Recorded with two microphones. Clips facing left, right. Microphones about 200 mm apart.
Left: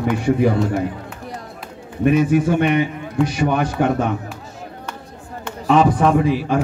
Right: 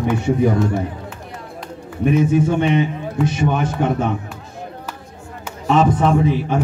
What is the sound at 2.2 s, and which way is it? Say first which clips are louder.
A man's voice: even; 25° right (ahead or behind).